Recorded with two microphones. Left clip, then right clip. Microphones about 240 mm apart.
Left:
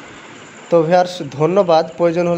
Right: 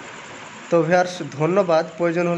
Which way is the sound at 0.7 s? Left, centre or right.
Centre.